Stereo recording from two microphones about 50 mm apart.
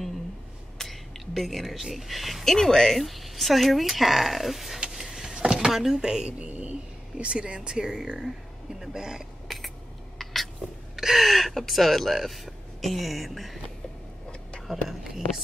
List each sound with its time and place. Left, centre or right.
0.7 s speech: centre
4.7 s vehicle: centre
5.0 s a sound: centre
5.7 s a man's voice: centre
9.5 s a sound: centre
11.0 s speech: centre
14.7 s speech: centre